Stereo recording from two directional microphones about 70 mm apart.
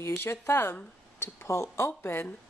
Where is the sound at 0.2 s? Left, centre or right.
Left.